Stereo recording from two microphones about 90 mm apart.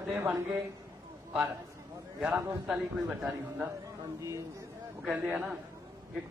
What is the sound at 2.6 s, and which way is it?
Speech, 5° right (ahead or behind).